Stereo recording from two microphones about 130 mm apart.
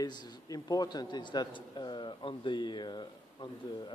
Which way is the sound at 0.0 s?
30° left (ahead or behind).